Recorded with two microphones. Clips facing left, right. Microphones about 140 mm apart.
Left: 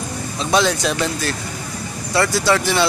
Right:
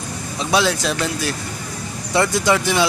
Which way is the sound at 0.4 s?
5° right (ahead or behind).